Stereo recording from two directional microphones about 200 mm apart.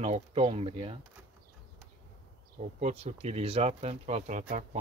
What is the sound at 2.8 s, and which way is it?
Speech, 30° right (ahead or behind).